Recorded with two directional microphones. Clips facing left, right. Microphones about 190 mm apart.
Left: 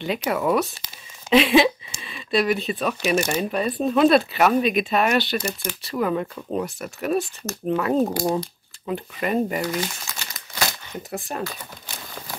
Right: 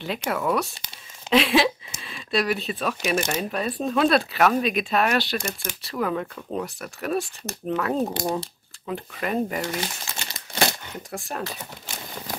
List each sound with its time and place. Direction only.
0.0 s speech: centre (ahead or behind)
9.8 s crumpling: 25° right (ahead or behind)
11.0 s speech: centre (ahead or behind)